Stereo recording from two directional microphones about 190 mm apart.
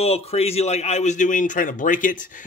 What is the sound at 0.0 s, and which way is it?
Speech, 30° left (ahead or behind).